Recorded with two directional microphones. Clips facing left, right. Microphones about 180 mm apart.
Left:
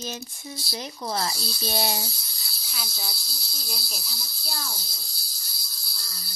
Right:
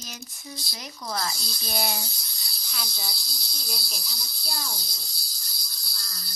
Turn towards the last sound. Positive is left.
turn(degrees=0)  # may be behind; listen again after turning